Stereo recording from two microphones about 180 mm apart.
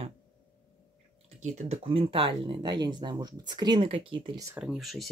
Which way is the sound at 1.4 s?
40° right (ahead or behind).